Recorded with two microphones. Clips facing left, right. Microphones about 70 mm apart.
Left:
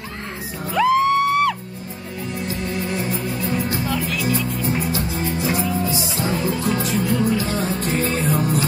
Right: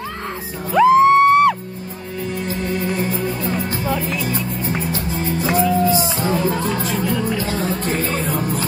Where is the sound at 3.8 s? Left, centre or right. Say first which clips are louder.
Right 1 dB; right.